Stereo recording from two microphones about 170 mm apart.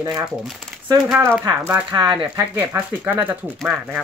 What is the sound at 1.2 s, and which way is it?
Speech, 15° right (ahead or behind).